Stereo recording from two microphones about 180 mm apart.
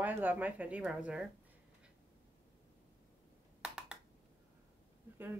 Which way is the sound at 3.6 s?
5° right (ahead or behind).